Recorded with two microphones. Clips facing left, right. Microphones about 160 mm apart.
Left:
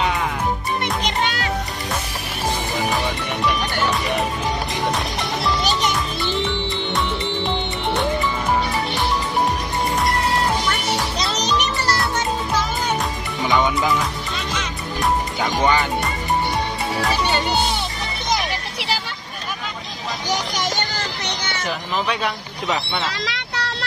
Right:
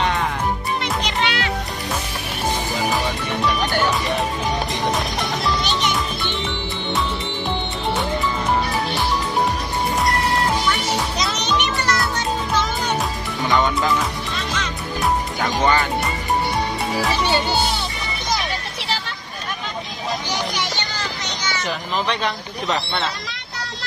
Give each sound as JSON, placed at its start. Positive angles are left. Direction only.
{"t": 1.0, "sound": "music", "side_deg": 45}
{"t": 11.1, "sound": "music", "side_deg": 35}
{"t": 15.4, "sound": "music", "side_deg": 15}
{"t": 20.2, "sound": "children playing", "side_deg": 45}
{"t": 21.6, "sound": "a sound", "side_deg": 5}
{"t": 23.2, "sound": "vehicle", "side_deg": 75}